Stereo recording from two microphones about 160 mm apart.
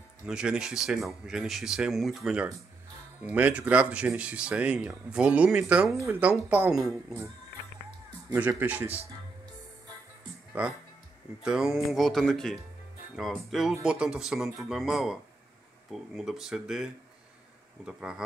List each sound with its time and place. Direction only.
0.3 s speech: 5° right (ahead or behind)
8.4 s speech: 10° right (ahead or behind)
8.8 s speech: 40° right (ahead or behind)
10.6 s speech: 10° right (ahead or behind)